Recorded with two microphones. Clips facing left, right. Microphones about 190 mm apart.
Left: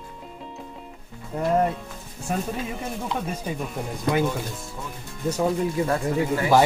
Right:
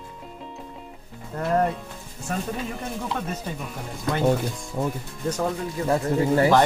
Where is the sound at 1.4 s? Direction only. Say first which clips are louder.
Left 1 dB; 5° left (ahead or behind).